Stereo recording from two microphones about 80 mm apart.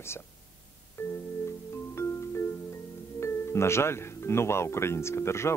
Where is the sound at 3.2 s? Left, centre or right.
Left.